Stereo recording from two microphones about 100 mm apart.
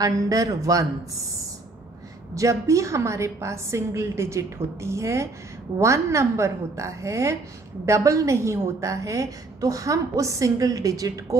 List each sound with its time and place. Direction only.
0.0 s a woman's voice: 35° right (ahead or behind)
2.3 s a woman's voice: 30° right (ahead or behind)